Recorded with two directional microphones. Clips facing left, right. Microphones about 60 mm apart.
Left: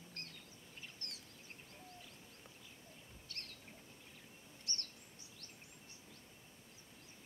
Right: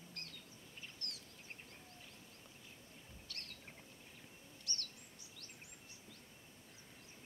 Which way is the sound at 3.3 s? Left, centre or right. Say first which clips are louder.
Even; left.